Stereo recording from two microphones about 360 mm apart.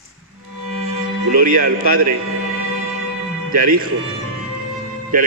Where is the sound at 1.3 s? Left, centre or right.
Right.